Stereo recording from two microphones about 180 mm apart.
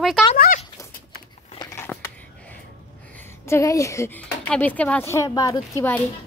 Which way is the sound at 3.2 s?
15° left (ahead or behind).